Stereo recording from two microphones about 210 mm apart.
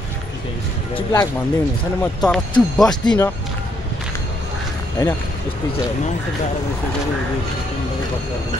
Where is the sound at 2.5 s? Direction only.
20° left (ahead or behind).